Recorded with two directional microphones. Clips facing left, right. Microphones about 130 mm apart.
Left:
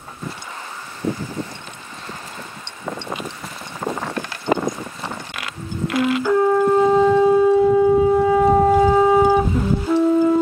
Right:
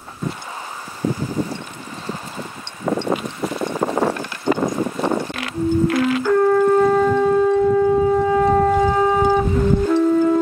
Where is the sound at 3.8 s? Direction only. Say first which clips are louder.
Right 6 dB; 35° right (ahead or behind).